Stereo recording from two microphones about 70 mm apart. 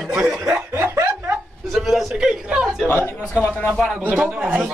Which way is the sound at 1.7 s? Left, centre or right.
Centre.